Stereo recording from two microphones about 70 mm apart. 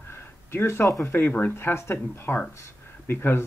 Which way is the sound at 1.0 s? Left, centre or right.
Left.